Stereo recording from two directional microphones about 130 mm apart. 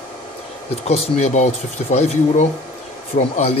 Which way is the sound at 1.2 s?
65° left (ahead or behind).